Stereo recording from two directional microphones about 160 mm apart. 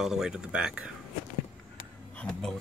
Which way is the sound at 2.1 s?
5° left (ahead or behind).